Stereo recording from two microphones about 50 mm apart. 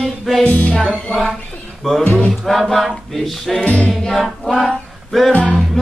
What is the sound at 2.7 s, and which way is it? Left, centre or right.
Music, centre.